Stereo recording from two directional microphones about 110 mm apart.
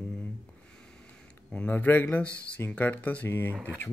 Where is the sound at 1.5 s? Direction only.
15° left (ahead or behind).